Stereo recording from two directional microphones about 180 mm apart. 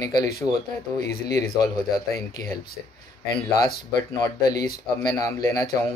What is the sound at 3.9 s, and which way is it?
Speech, 20° left (ahead or behind).